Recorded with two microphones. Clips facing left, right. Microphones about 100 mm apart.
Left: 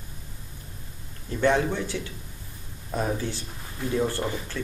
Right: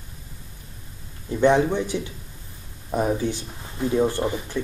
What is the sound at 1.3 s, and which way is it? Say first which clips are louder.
Speech: right 5 dB; 20° right (ahead or behind).